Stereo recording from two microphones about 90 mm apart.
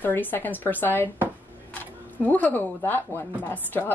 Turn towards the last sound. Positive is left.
turn(degrees=20)  # may be behind; listen again after turning